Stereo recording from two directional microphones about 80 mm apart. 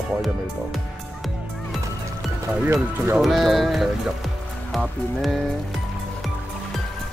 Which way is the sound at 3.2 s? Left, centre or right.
Centre.